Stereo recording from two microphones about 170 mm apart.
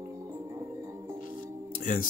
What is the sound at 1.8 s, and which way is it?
Music, 50° left (ahead or behind).